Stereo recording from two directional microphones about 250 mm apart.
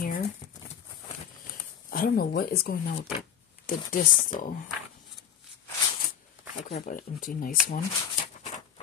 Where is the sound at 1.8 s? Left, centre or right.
Left.